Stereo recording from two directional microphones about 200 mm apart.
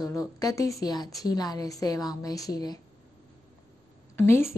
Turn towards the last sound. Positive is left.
turn(degrees=10)  # may be behind; listen again after turning